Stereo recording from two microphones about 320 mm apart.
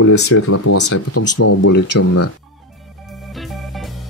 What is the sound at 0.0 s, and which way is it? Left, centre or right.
Speech, left.